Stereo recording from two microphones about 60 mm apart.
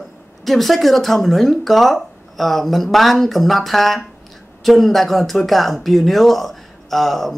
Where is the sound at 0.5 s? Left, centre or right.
Centre.